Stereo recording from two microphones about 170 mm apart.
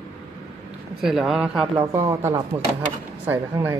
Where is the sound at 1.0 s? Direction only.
Centre (ahead or behind).